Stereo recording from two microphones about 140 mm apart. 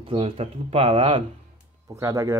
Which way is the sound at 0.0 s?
40° right (ahead or behind).